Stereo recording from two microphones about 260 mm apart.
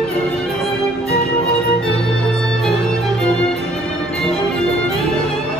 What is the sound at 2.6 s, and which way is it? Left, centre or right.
Music, centre.